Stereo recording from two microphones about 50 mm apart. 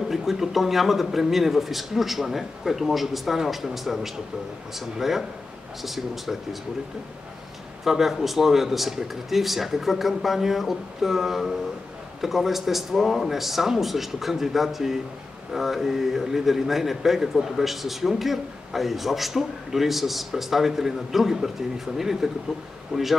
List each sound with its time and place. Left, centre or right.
0.1 s speech: centre
7.8 s speech: centre
22.9 s speech: centre